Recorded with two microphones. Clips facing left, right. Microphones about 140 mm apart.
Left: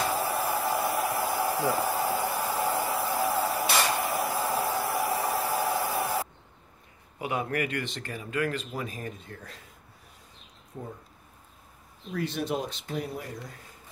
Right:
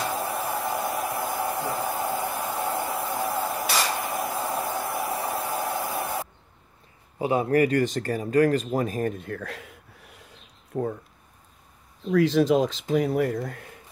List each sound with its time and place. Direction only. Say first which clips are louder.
0.0 s hair dryer: even; centre (ahead or behind)
4.0 s a sound: even; centre (ahead or behind)
7.2 s speech: right 9 dB; 30° right (ahead or behind); by 11.0 s 70° right (ahead or behind)
12.1 s speech: right 11 dB; 90° right; by 13.7 s 65° right (ahead or behind)